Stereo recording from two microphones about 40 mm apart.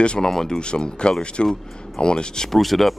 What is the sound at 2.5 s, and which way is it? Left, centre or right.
Speech, centre.